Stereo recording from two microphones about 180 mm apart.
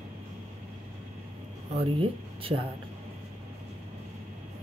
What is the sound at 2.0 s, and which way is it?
Speech, 30° right (ahead or behind).